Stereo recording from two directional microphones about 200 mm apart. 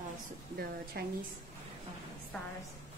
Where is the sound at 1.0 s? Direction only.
50° right (ahead or behind).